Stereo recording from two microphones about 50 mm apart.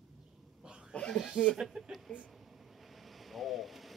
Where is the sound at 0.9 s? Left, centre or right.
Centre.